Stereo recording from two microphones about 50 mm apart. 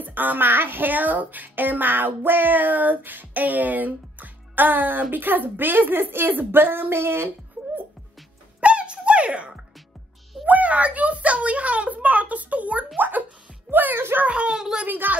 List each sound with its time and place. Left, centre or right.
0.0 s a woman's voice: right
8.5 s squeak: right
10.4 s a child's voice: right
14.2 s speech: right
14.5 s a woman's voice: centre
14.9 s speech: right